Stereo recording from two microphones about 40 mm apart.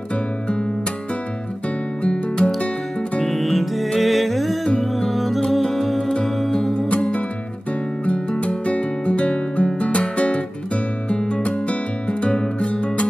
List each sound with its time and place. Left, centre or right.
2.0 s music: left
3.3 s music: centre
8.0 s music: left